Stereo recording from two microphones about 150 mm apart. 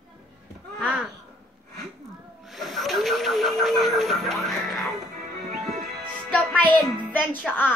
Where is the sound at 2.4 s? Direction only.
Centre (ahead or behind).